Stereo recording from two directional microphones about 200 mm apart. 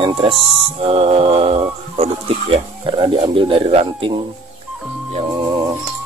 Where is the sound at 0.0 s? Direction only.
25° right (ahead or behind).